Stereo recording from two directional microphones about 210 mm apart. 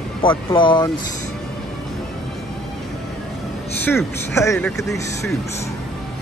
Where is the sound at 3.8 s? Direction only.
10° left (ahead or behind).